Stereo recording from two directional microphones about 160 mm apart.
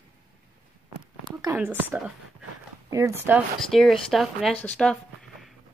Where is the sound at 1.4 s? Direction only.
15° right (ahead or behind).